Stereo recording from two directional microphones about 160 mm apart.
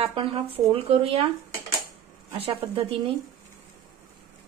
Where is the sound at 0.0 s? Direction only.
35° right (ahead or behind).